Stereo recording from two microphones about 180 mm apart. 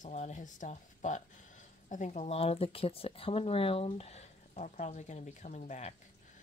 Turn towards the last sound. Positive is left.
turn(degrees=40)  # may be behind; listen again after turning